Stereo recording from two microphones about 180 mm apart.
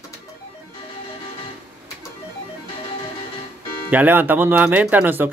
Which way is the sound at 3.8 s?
10° right (ahead or behind).